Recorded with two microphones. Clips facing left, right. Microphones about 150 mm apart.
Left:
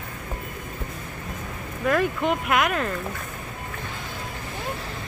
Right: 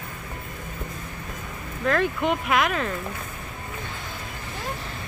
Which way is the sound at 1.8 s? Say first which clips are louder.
Left 1 dB; 5° left (ahead or behind).